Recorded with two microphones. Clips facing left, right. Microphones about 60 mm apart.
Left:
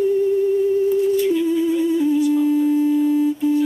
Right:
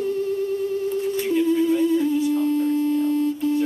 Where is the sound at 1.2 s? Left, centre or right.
Right.